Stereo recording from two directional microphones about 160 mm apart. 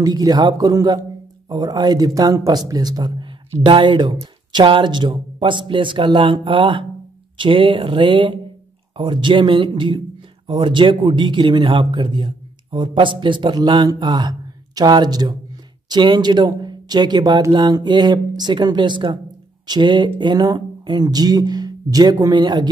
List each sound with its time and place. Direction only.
0.0 s speech: 25° right (ahead or behind)